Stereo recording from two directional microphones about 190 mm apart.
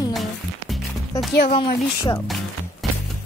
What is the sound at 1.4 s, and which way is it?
Speech, 25° left (ahead or behind).